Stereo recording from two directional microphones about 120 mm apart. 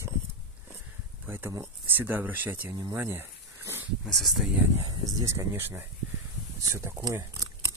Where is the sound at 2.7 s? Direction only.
35° right (ahead or behind).